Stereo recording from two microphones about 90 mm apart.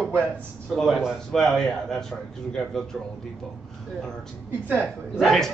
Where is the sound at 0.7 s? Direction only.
Centre (ahead or behind).